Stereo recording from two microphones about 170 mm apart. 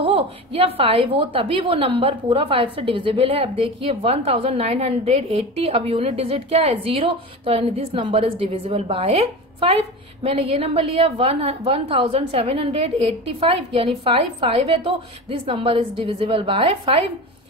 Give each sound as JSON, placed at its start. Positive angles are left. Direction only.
{"t": 0.0, "sound": "a woman's voice", "side_deg": -35}